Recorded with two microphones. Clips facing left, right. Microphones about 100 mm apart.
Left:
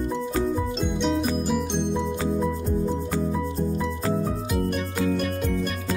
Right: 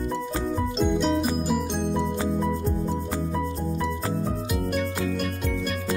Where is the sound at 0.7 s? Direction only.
Centre (ahead or behind).